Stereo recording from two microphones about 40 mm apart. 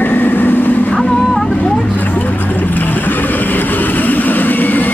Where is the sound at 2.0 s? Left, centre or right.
Left.